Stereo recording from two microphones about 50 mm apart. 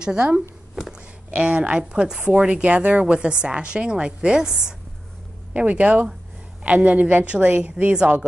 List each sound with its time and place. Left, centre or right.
0.0 s a woman's voice: centre
5.5 s a woman's voice: right
7.8 s a woman's voice: centre